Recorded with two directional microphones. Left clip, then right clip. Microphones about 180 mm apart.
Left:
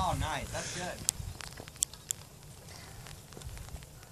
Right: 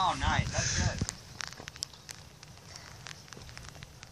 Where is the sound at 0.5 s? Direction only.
10° left (ahead or behind).